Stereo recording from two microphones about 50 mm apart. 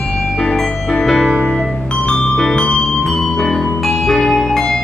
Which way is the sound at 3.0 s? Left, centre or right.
Centre.